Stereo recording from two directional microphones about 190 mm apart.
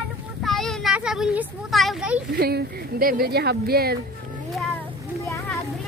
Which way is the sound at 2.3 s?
55° right (ahead or behind).